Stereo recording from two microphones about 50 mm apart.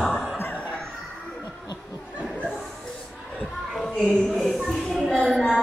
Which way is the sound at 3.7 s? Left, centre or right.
Centre.